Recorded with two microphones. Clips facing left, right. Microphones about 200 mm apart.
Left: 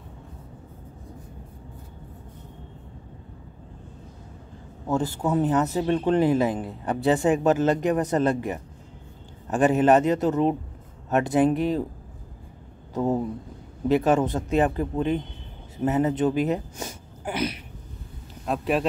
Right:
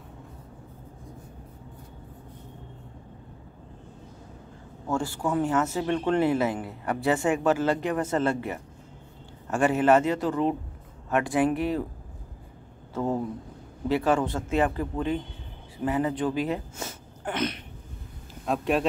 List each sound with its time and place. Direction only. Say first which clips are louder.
4.8 s a man's voice: left 3 dB; 20° left (ahead or behind)
12.9 s speech: left 3 dB; 20° left (ahead or behind); by 18.9 s centre (ahead or behind)